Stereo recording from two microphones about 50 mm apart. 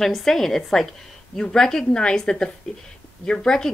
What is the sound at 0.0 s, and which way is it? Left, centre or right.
A woman's voice, centre.